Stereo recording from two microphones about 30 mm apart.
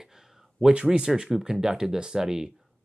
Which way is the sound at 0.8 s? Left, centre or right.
Right.